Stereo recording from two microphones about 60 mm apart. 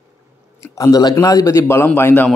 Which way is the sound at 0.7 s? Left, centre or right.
Left.